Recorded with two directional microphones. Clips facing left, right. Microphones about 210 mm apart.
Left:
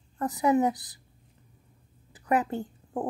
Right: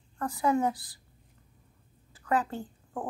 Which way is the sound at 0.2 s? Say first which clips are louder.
Left 3 dB; 20° left (ahead or behind).